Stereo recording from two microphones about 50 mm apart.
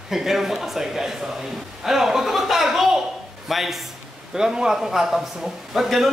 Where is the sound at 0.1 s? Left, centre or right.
Centre.